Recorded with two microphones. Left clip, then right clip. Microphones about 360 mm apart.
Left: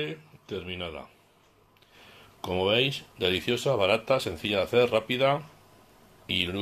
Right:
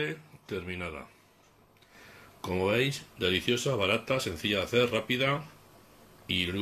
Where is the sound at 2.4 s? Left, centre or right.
Centre.